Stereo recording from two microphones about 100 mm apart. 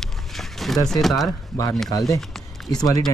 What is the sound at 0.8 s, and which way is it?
Speech, centre (ahead or behind).